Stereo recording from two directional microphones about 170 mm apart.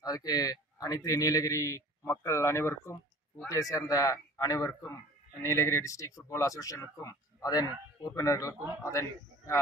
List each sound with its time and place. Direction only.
0.0 s a man's voice: 20° left (ahead or behind)